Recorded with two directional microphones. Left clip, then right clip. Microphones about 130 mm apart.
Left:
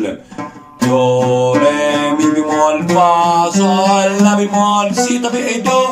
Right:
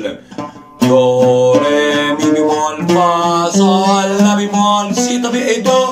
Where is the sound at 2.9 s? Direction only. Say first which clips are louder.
Left 1 dB; 15° left (ahead or behind).